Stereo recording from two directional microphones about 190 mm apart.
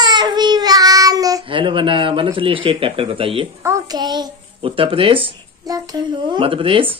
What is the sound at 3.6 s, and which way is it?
Child singing, 15° right (ahead or behind).